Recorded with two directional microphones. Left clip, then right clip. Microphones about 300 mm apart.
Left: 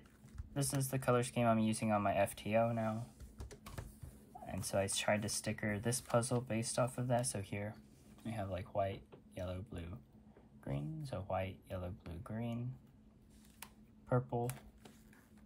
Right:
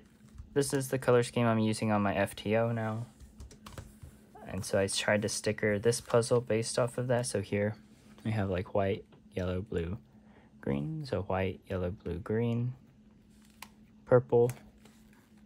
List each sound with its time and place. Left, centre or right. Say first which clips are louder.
0.6 s speech: right 11 dB; right
4.5 s speech: right 7 dB; right